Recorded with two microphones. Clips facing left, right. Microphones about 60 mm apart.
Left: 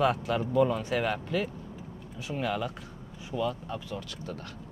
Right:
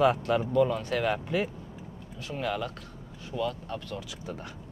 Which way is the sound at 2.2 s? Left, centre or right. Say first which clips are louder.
Left 1 dB; centre.